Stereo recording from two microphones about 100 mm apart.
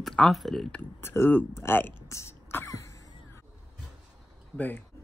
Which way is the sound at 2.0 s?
25° left (ahead or behind).